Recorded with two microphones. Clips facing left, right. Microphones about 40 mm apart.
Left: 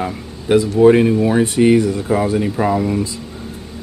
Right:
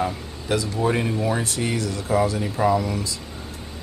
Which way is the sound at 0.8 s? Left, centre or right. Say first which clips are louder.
Left 14 dB; left.